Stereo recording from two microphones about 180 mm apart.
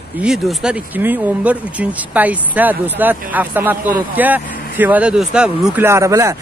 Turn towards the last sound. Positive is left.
turn(degrees=-15)  # may be behind; listen again after turning